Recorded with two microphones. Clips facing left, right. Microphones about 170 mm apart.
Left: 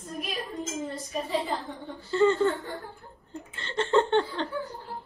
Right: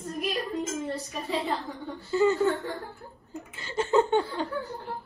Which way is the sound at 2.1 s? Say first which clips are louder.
Left 1 dB; 5° right (ahead or behind).